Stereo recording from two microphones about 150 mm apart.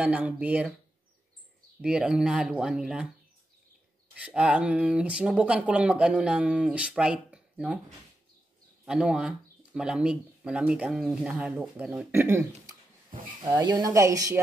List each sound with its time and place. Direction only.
0.0 s speech: 10° right (ahead or behind)
1.8 s speech: 5° right (ahead or behind)
4.2 s speech: 10° right (ahead or behind)
8.8 s speech: 5° right (ahead or behind)
13.4 s speech: 25° right (ahead or behind)